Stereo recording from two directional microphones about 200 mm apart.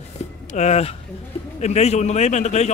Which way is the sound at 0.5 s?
35° left (ahead or behind).